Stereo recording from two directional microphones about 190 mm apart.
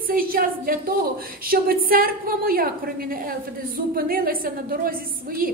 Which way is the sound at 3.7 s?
50° right (ahead or behind).